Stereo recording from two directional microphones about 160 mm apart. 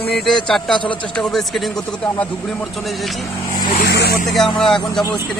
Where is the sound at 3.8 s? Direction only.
85° left.